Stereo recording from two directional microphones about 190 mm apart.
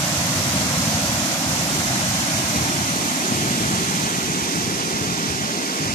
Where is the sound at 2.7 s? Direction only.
40° left (ahead or behind).